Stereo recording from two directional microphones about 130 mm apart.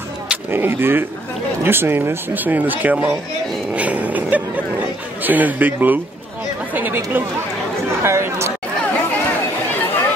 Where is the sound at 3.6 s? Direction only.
10° right (ahead or behind).